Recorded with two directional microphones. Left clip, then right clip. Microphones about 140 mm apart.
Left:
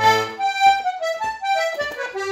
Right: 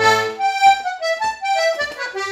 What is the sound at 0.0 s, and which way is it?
Music, 15° left (ahead or behind).